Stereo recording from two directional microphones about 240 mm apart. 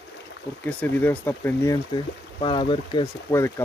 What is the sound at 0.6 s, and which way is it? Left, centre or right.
Speech, centre.